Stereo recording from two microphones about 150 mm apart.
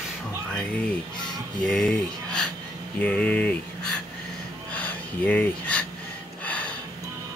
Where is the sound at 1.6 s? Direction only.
5° left (ahead or behind).